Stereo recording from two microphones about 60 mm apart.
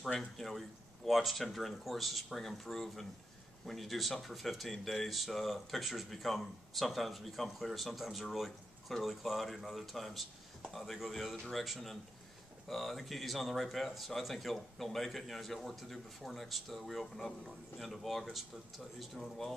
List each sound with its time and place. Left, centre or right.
0.0 s speech: centre